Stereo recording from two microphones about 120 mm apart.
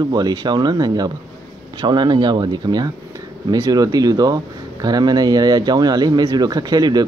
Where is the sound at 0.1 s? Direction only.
35° right (ahead or behind).